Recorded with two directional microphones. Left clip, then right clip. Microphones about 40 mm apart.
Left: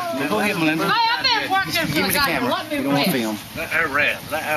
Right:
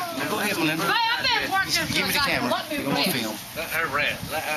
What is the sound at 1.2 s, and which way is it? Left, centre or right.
Speech, right.